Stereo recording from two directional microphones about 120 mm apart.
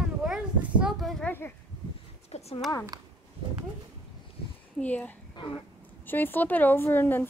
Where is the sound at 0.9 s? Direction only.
Centre (ahead or behind).